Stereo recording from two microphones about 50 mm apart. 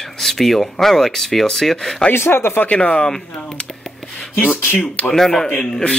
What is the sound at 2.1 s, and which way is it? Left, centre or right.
Speech, left.